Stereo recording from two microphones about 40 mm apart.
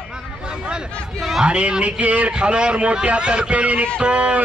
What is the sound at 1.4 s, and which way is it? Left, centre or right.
Speech, right.